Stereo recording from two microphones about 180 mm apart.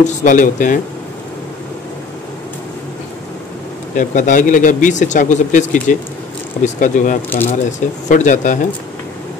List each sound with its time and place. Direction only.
0.0 s speech: 45° left (ahead or behind)
3.9 s speech: 45° left (ahead or behind)
7.2 s speech: 10° left (ahead or behind)
8.1 s speech: 45° left (ahead or behind)